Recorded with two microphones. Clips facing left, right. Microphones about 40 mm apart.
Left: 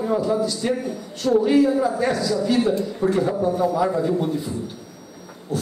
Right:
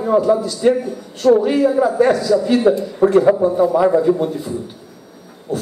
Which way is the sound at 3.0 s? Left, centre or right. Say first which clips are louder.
Right 8 dB; right.